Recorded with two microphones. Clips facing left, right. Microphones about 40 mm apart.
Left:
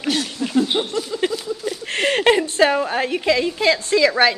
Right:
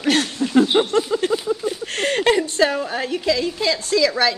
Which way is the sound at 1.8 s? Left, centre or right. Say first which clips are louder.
Left 3 dB; left.